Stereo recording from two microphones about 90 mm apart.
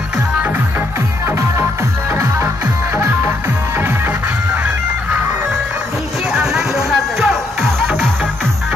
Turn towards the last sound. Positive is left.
turn(degrees=0)  # may be behind; listen again after turning